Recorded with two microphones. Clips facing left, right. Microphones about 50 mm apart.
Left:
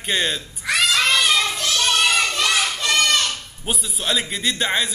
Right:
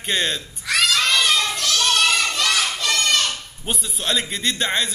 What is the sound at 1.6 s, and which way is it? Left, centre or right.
Child singing, centre.